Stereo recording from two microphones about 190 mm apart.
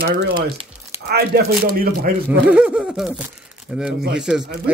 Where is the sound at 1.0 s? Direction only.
55° right (ahead or behind).